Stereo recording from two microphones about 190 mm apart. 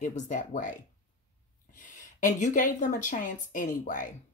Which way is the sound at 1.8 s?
40° left (ahead or behind).